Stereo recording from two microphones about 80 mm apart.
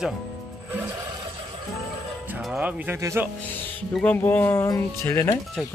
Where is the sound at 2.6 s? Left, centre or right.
Right.